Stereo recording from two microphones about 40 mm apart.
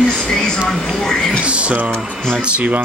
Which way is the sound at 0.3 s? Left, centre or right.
Centre.